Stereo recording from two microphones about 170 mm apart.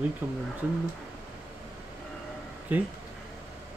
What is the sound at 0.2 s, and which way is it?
Speech, 15° right (ahead or behind).